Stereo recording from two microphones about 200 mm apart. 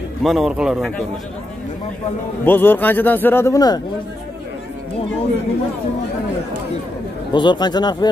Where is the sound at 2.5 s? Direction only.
10° left (ahead or behind).